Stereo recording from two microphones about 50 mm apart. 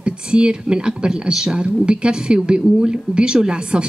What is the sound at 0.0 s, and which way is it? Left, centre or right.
A woman's voice, centre.